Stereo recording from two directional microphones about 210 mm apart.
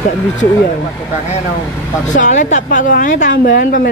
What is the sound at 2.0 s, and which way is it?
Speech, 35° left (ahead or behind).